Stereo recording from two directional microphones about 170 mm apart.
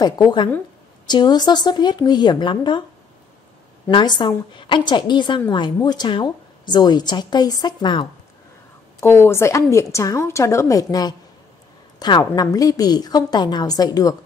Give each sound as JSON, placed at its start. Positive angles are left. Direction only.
{"t": 0.0, "sound": "a woman's voice", "side_deg": 25}
{"t": 3.9, "sound": "a woman's voice", "side_deg": 25}
{"t": 9.0, "sound": "a woman's voice", "side_deg": 15}